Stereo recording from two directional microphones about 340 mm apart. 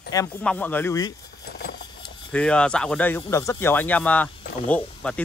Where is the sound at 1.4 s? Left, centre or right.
Left.